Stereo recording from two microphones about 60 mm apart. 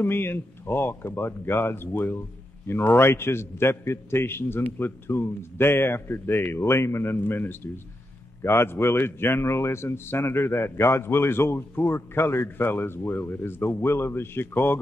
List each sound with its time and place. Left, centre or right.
0.0 s a man's voice: left